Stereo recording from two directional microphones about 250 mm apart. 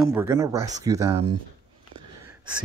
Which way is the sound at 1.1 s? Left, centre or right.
Right.